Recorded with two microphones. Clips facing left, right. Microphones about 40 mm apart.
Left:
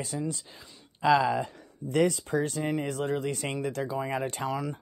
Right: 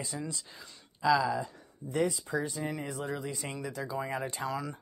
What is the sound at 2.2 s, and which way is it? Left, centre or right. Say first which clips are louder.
Speech: left 4 dB; left.